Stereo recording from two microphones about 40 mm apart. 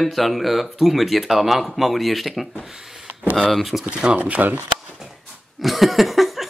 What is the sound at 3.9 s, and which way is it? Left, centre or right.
Speech, right.